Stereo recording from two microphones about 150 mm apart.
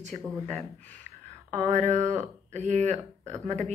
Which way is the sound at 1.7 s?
50° right (ahead or behind).